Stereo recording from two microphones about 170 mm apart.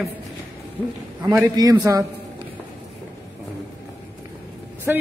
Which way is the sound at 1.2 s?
15° right (ahead or behind).